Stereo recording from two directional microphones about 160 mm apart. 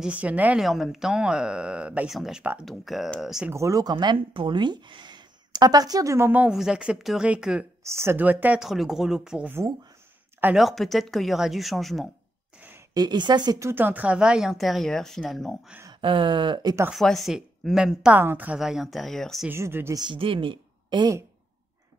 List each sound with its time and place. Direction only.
0.0 s speech: 10° right (ahead or behind)
3.5 s speech: 20° right (ahead or behind)
7.8 s speech: 15° right (ahead or behind); by 12.1 s centre (ahead or behind)
12.9 s speech: 25° right (ahead or behind); by 15.5 s centre (ahead or behind)
15.9 s speech: 30° right (ahead or behind)
16.9 s speech: centre (ahead or behind)
19.5 s speech: 15° right (ahead or behind)
20.1 s speech: 35° right (ahead or behind)